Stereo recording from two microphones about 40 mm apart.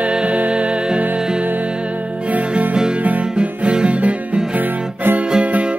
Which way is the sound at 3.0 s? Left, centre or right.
Right.